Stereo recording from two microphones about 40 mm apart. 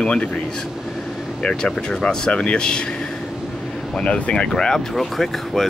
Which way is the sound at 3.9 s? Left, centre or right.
Left.